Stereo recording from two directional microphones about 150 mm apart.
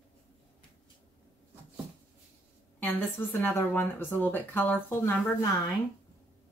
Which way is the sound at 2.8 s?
15° left (ahead or behind).